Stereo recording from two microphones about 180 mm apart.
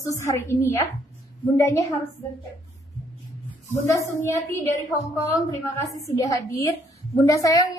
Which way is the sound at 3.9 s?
15° left (ahead or behind).